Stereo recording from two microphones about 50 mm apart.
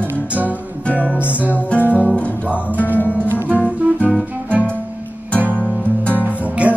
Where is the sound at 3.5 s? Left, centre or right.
Right.